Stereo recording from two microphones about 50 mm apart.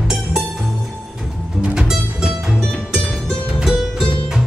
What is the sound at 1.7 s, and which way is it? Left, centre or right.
Music, centre.